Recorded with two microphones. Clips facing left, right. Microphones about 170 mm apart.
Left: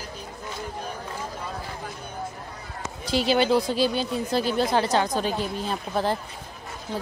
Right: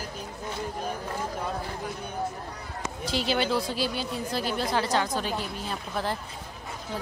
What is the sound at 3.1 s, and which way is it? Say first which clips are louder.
A woman's voice: left 6 dB; 15° left (ahead or behind).